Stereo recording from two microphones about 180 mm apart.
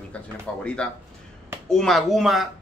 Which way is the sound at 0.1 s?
5° left (ahead or behind).